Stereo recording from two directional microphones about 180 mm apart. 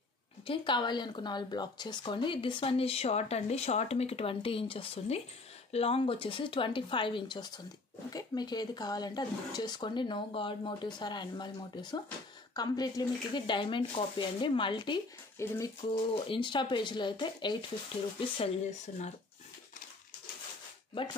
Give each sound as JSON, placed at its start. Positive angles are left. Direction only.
{"t": 0.5, "sound": "speech", "side_deg": 25}
{"t": 15.3, "sound": "speech", "side_deg": 15}
{"t": 15.9, "sound": "speech", "side_deg": 30}
{"t": 18.4, "sound": "speech", "side_deg": 40}
{"t": 20.9, "sound": "speech", "side_deg": 25}